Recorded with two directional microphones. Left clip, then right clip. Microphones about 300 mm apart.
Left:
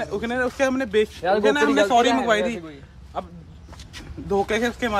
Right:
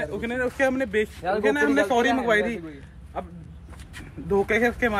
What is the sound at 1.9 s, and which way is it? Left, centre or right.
Speech, centre.